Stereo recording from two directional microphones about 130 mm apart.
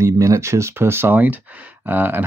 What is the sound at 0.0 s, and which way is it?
Speech, 25° right (ahead or behind).